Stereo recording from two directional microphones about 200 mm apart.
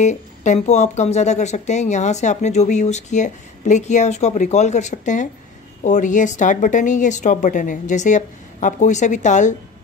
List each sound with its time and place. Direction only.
0.0 s speech: 35° left (ahead or behind)